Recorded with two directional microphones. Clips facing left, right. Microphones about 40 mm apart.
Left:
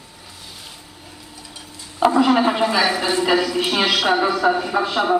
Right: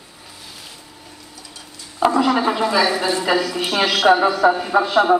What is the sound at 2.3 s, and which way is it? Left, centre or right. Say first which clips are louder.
Speech: left 1 dB; left.